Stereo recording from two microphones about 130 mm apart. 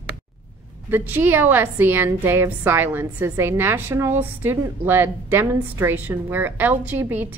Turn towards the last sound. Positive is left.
turn(degrees=-15)  # may be behind; listen again after turning